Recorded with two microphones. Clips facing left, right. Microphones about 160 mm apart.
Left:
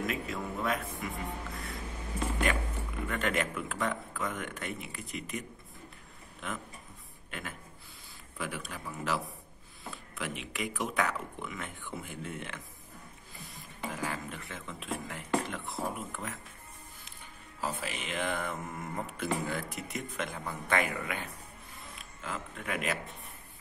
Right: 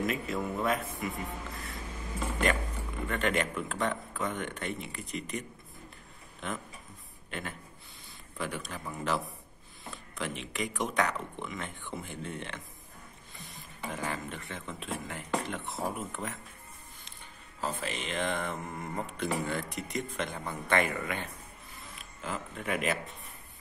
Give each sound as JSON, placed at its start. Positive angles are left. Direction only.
{"t": 0.0, "sound": "speech", "side_deg": 0}
{"t": 3.1, "sound": "speech", "side_deg": 0}
{"t": 6.4, "sound": "a man's voice", "side_deg": 0}
{"t": 17.6, "sound": "speech", "side_deg": 10}
{"t": 21.7, "sound": "camera", "side_deg": 0}